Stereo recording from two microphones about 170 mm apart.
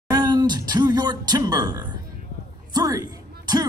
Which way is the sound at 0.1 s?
20° right (ahead or behind).